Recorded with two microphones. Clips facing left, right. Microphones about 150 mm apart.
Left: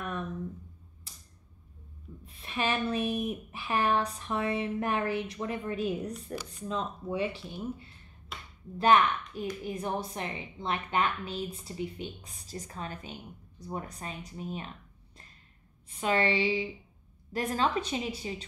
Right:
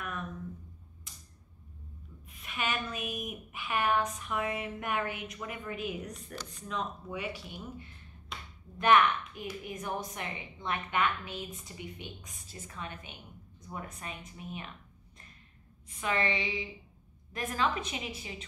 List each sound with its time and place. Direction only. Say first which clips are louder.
1.1 s typewriter: even; 35° left (ahead or behind)
2.2 s a woman's voice: left 4 dB; 30° left (ahead or behind)
8.3 s a sound: even; 5° left (ahead or behind)
8.7 s a woman's voice: left 1 dB; 30° left (ahead or behind)
15.9 s a woman's voice: left 4 dB; 30° left (ahead or behind)